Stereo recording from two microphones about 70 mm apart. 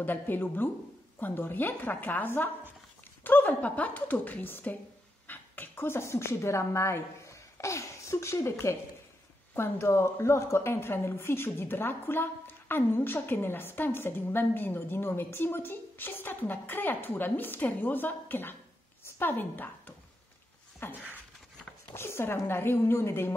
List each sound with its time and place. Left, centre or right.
0.0 s a woman's voice: left
20.8 s a woman's voice: left